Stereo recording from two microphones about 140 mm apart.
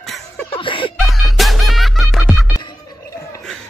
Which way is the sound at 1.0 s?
Centre (ahead or behind).